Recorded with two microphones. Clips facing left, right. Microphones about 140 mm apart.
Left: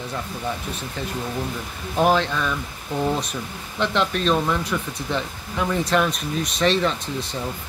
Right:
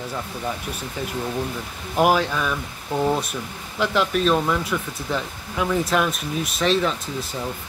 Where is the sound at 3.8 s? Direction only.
5° right (ahead or behind).